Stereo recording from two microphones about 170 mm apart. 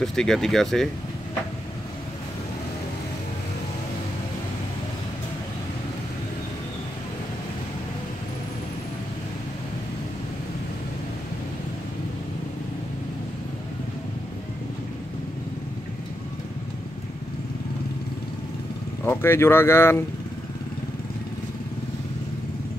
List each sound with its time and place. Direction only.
0.0 s speech: 5° left (ahead or behind)
19.0 s speech: 15° left (ahead or behind)